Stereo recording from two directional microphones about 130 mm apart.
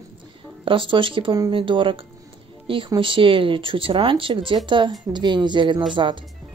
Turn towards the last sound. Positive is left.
turn(degrees=-40)  # may be behind; listen again after turning